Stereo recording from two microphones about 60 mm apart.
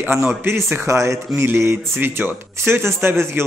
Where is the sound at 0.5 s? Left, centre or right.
Right.